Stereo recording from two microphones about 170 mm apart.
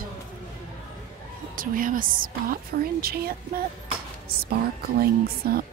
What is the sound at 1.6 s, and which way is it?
A woman's voice, 55° right (ahead or behind).